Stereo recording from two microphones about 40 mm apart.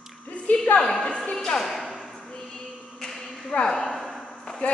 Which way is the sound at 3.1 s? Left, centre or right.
Centre.